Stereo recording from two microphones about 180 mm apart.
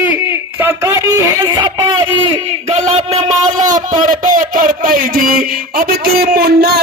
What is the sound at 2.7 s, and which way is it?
A man's voice, 40° right (ahead or behind).